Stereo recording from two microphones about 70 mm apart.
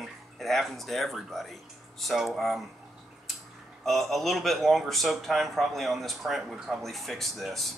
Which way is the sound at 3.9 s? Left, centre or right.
Centre.